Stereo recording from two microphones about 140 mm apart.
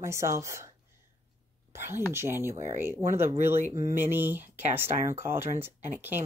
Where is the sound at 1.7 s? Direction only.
15° right (ahead or behind).